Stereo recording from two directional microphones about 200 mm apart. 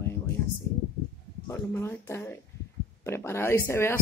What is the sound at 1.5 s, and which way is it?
Speech, 15° left (ahead or behind).